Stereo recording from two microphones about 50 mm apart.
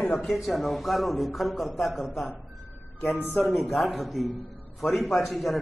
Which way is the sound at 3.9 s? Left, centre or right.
Centre.